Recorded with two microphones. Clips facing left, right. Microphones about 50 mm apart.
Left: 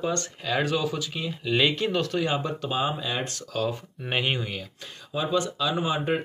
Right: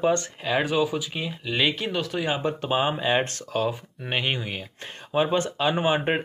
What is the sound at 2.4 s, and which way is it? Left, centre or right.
Speech, right.